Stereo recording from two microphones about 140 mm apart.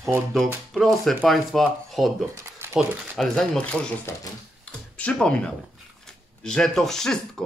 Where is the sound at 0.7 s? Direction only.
Centre (ahead or behind).